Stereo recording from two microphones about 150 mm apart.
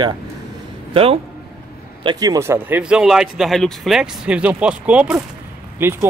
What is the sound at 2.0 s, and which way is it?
Speech, 25° right (ahead or behind).